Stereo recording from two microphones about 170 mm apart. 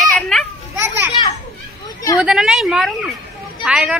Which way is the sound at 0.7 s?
15° right (ahead or behind).